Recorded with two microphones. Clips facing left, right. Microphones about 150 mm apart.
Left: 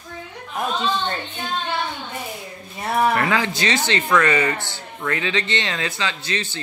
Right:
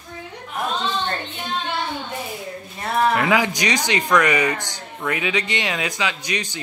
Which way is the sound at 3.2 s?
15° right (ahead or behind).